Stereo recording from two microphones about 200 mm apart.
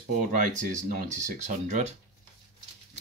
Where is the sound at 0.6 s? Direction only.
40° right (ahead or behind).